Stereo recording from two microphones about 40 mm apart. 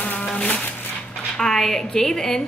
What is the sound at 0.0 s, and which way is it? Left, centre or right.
Insect, left.